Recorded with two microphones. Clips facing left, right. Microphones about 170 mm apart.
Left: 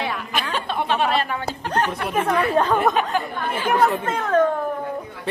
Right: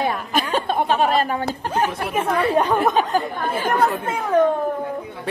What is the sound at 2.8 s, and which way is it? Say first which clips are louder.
Speech: right 1 dB; centre (ahead or behind).